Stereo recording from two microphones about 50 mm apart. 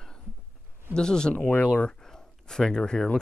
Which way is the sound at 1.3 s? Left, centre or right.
Left.